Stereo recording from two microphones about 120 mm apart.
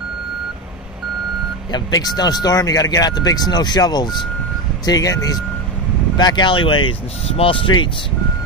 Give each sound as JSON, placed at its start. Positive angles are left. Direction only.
{"t": 1.7, "sound": "speech", "side_deg": 35}